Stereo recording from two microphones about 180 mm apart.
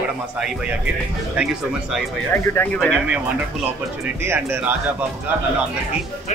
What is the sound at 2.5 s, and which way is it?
Speech, 10° left (ahead or behind).